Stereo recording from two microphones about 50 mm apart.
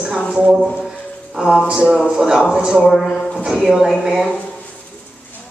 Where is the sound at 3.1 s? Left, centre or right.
Centre.